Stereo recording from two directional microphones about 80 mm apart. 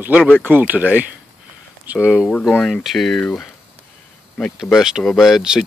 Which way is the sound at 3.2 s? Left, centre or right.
Centre.